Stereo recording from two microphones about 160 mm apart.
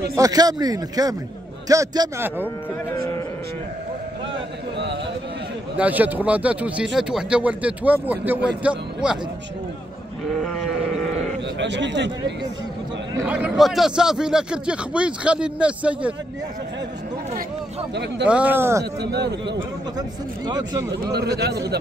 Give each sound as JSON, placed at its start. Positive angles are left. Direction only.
{"t": 0.1, "sound": "a man's voice", "side_deg": -20}
{"t": 5.8, "sound": "a man's voice", "side_deg": -10}
{"t": 11.6, "sound": "speech", "side_deg": -90}
{"t": 13.3, "sound": "a man's voice", "side_deg": -5}
{"t": 17.9, "sound": "speech", "side_deg": -90}
{"t": 18.2, "sound": "a man's voice", "side_deg": -10}
{"t": 18.9, "sound": "speech", "side_deg": -90}
{"t": 20.0, "sound": "speech", "side_deg": -25}
{"t": 20.9, "sound": "speech", "side_deg": -90}